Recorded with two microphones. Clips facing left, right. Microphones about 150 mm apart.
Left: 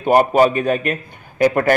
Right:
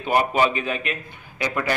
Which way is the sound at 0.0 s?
45° left (ahead or behind).